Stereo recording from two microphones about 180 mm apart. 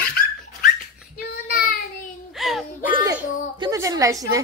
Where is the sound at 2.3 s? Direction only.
Centre (ahead or behind).